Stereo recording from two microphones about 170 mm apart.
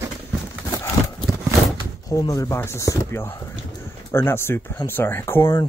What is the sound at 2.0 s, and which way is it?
Speech, 20° left (ahead or behind).